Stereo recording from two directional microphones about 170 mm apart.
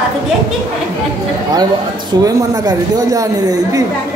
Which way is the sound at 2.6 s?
20° right (ahead or behind).